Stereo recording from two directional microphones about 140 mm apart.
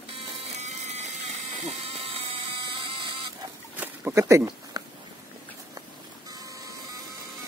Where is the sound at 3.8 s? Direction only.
15° right (ahead or behind).